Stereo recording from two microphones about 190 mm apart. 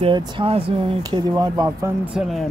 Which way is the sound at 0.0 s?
30° right (ahead or behind).